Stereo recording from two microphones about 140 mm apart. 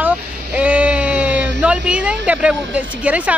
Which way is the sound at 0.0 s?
10° right (ahead or behind).